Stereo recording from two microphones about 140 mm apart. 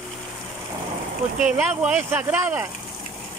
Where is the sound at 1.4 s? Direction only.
10° right (ahead or behind).